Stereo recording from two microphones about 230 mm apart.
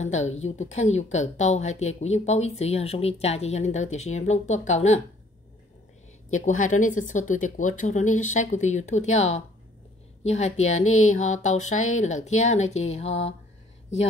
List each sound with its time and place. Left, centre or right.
0.0 s speech: left
6.3 s speech: left
10.2 s speech: left